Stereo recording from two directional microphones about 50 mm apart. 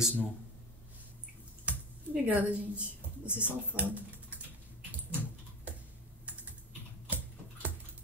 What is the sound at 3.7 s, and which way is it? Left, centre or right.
Speech, right.